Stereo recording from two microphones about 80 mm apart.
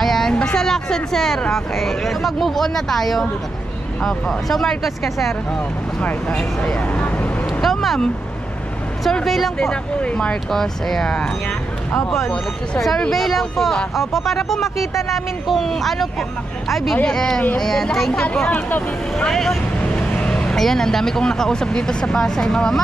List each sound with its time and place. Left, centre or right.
0.0 s speech: centre
5.9 s speech: centre
7.4 s vehicle: centre
9.0 s speech: centre
16.9 s speech: centre
19.1 s speech: centre
19.8 s speech: centre